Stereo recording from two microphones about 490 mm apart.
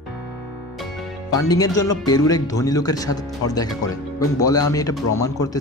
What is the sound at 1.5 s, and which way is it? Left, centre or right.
Speech, centre.